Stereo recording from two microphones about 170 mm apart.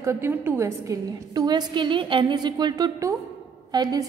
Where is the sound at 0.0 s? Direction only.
15° right (ahead or behind).